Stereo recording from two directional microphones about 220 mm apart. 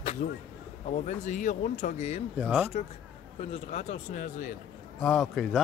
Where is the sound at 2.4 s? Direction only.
5° right (ahead or behind).